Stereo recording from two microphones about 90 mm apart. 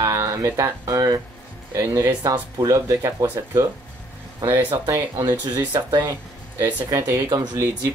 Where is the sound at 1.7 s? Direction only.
30° right (ahead or behind).